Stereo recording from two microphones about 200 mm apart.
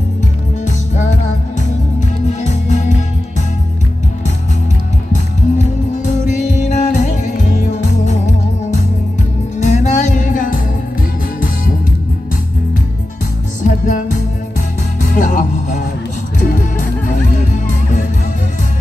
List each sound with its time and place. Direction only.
0.7 s music: 35° left (ahead or behind)
6.0 s music: 35° left (ahead or behind)
13.7 s music: 40° left (ahead or behind)